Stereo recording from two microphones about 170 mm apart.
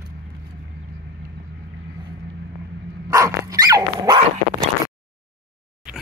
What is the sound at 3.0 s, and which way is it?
Dog, 20° right (ahead or behind).